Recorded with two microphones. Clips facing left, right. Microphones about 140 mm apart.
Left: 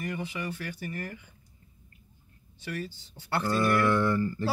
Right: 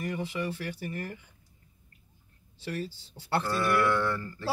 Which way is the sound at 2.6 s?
25° right (ahead or behind).